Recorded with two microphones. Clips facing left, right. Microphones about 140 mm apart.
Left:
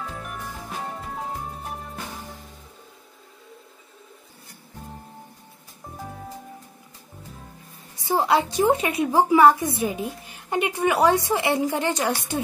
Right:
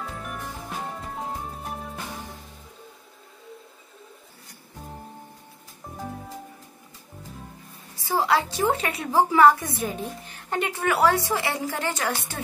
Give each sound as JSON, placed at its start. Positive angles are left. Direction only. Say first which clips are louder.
{"t": 0.0, "sound": "music", "louder": "even", "side_deg": 0}
{"t": 8.0, "sound": "a woman's voice", "louder": "left 2 dB", "side_deg": 20}